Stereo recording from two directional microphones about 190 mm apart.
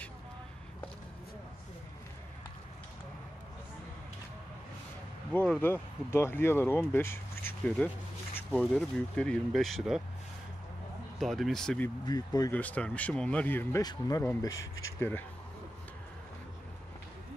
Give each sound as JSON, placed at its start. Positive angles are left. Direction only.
{"t": 5.3, "sound": "speech", "side_deg": 10}
{"t": 11.1, "sound": "speech", "side_deg": 0}
{"t": 12.1, "sound": "speech", "side_deg": 20}
{"t": 12.5, "sound": "speech", "side_deg": 10}